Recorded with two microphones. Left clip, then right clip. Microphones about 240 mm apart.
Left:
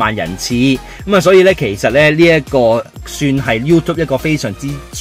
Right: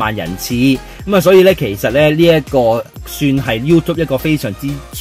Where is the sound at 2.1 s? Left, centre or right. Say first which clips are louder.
Left 1 dB; left.